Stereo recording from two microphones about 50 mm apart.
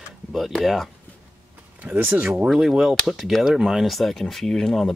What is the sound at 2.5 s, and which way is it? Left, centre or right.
Speech, centre.